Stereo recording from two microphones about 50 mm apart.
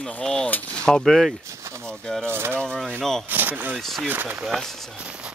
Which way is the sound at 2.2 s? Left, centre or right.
Right.